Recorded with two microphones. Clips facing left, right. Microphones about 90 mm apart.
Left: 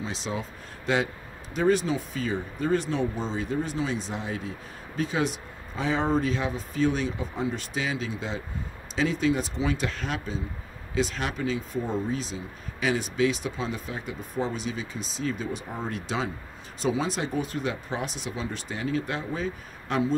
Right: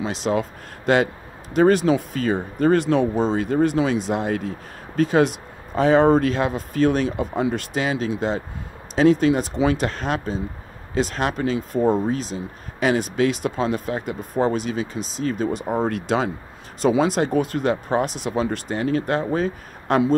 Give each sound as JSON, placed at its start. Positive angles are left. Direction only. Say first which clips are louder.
{"t": 0.0, "sound": "speech", "louder": "right 10 dB", "side_deg": -60}